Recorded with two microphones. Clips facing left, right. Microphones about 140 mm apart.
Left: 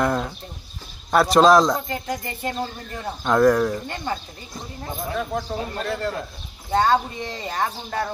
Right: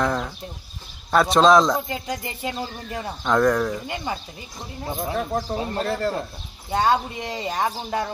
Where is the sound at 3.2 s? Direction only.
5° left (ahead or behind).